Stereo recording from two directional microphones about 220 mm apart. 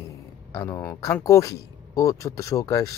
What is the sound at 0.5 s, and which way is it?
Speech, 15° left (ahead or behind).